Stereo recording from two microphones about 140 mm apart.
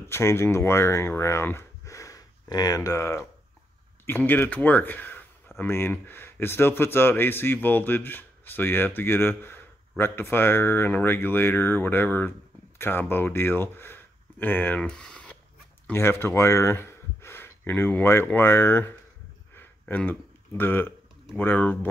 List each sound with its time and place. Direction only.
0.1 s a man's voice: 20° left (ahead or behind)
15.9 s speech: 15° left (ahead or behind)
19.5 s a sound: 15° left (ahead or behind)
21.4 s a man's voice: 10° left (ahead or behind)